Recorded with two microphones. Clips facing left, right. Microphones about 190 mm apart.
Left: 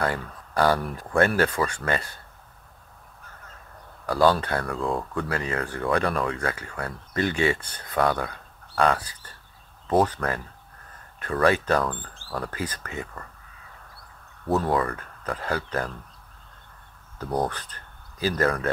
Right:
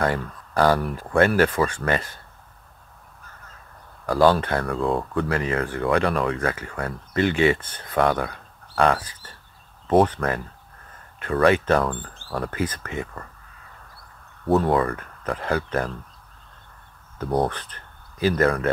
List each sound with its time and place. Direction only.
0.0 s speech: 25° right (ahead or behind)
4.2 s speech: 20° right (ahead or behind)
14.6 s speech: 25° right (ahead or behind)
17.4 s speech: 25° right (ahead or behind)